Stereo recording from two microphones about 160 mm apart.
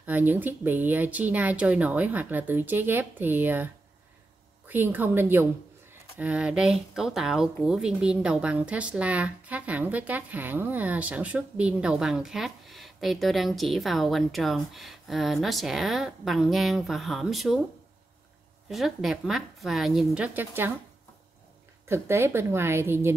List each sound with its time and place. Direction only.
0.0 s speech: 10° right (ahead or behind)
18.7 s speech: centre (ahead or behind)
20.3 s speech: 15° right (ahead or behind)
21.8 s speech: 15° right (ahead or behind)